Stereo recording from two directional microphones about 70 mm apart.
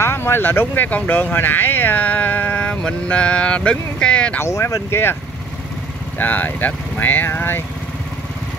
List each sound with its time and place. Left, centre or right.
0.0 s speech: left; by 4.4 s centre
4.4 s speech: left
6.1 s speech: left